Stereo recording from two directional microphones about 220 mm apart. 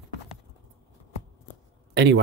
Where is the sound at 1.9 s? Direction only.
50° right (ahead or behind).